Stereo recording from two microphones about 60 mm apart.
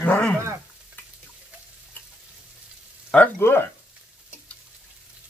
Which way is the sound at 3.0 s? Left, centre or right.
Left.